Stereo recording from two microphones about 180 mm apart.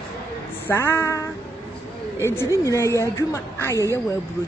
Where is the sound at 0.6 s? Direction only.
15° left (ahead or behind).